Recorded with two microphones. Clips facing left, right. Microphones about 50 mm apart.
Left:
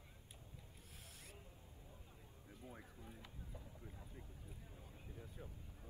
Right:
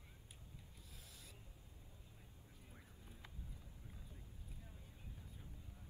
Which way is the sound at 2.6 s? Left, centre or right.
Left.